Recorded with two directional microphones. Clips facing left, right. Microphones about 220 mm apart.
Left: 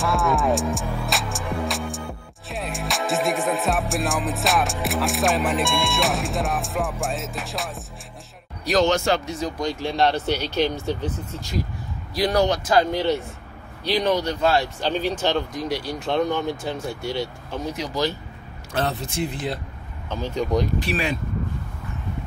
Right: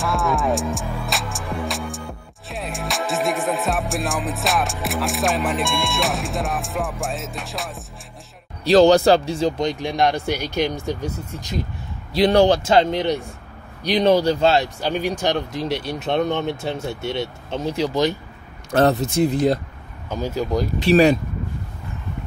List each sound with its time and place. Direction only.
0.0 s music: centre (ahead or behind)
8.6 s speech: 30° right (ahead or behind); by 11.5 s 10° right (ahead or behind)
12.1 s speech: 25° right (ahead or behind)
14.8 s speech: 10° right (ahead or behind)
15.5 s speech: 25° right (ahead or behind)
18.7 s speech: 45° right (ahead or behind)
20.1 s speech: 10° right (ahead or behind)
20.9 s speech: 40° right (ahead or behind)